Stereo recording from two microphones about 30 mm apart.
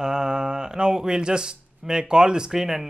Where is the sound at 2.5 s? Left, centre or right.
Centre.